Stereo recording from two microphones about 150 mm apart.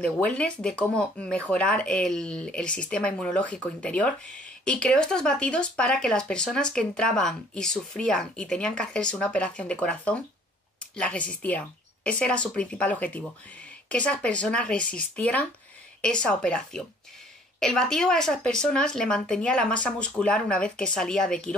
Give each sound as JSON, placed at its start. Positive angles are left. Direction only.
{"t": 0.0, "sound": "a woman's voice", "side_deg": 5}